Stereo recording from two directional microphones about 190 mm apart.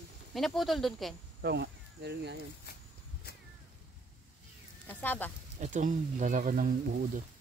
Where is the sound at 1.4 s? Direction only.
60° right (ahead or behind).